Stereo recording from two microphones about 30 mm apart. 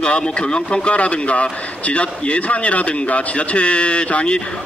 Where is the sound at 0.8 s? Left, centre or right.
Left.